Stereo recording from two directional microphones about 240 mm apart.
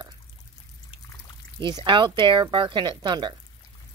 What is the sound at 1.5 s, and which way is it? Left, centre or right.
Speech, centre.